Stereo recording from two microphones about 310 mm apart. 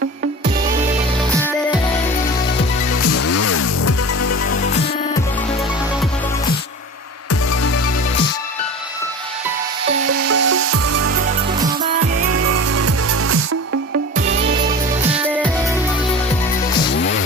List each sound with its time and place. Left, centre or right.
2.9 s music: left
7.2 s music: left
9.8 s music: right
12.2 s music: right
16.9 s music: left